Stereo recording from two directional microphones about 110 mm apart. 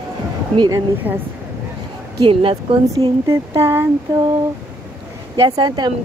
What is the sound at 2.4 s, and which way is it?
Speech, 60° right (ahead or behind).